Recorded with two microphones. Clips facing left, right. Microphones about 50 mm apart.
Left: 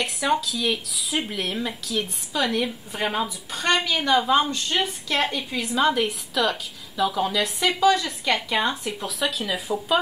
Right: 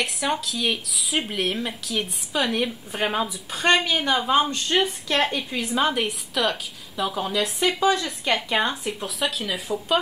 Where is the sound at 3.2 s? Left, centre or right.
Centre.